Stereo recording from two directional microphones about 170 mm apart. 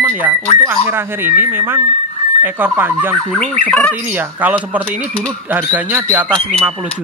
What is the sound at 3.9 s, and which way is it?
Speech, 10° right (ahead or behind).